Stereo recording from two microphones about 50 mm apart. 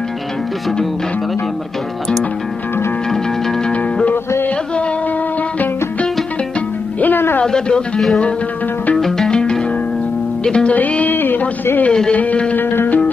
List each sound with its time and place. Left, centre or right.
7.0 s music: left
7.4 s a man's voice: centre
8.9 s music: centre
9.3 s music: centre
10.4 s a man's voice: centre
10.7 s music: left
11.1 s a sound: left
11.9 s a man's voice: centre
12.2 s music: left
12.5 s music: left